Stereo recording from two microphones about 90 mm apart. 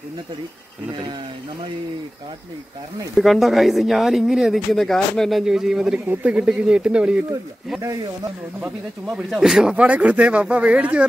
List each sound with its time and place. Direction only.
3.2 s speech: centre (ahead or behind)
5.4 s speech: 5° right (ahead or behind)
5.9 s speech: 15° right (ahead or behind)
7.8 s speech: 45° right (ahead or behind)
9.1 s speech: 5° right (ahead or behind)